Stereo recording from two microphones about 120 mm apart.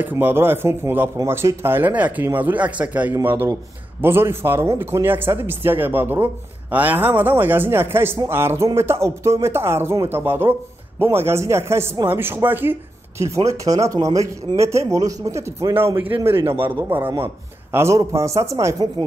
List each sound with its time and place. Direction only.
0.0 s speech: 15° right (ahead or behind)
13.8 s speech: 30° right (ahead or behind)